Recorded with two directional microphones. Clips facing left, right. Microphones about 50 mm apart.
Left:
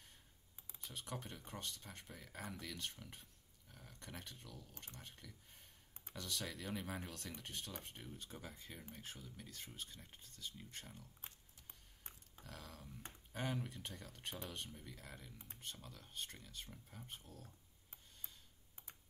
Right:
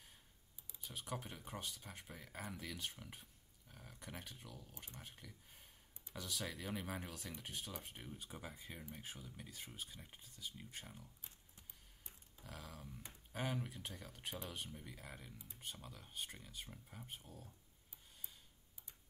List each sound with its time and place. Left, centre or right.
0.8 s speech: centre
12.4 s speech: centre
15.3 s speech: left
15.6 s speech: centre